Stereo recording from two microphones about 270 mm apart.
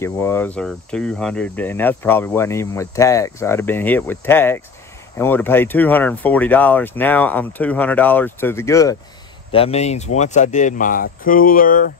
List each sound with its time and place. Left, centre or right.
0.0 s cricket: centre
9.5 s speech: left